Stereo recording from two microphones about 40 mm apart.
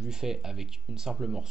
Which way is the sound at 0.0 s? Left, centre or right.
Centre.